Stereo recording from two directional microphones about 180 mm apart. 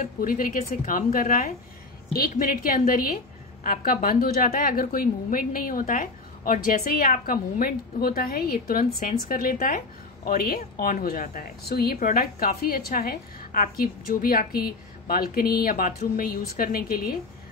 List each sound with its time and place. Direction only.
0.0 s a woman's voice: 50° left (ahead or behind)